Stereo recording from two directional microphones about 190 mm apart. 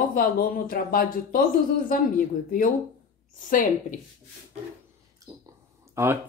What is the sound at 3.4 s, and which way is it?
Speech, 45° left (ahead or behind).